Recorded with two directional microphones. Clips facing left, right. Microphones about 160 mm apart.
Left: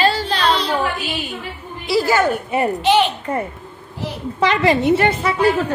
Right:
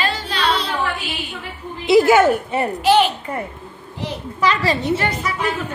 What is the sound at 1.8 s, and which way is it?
Speech, 20° right (ahead or behind).